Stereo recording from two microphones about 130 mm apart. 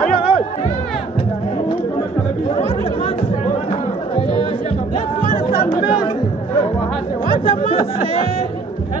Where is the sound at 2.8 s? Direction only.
45° left (ahead or behind).